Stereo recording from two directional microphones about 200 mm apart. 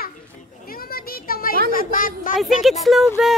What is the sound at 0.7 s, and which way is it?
Children playing, 45° left (ahead or behind).